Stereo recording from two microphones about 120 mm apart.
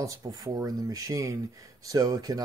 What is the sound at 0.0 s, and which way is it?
Speech, 30° right (ahead or behind).